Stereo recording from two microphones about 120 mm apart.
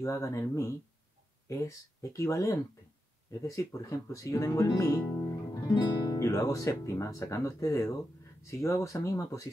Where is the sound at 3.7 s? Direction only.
25° left (ahead or behind).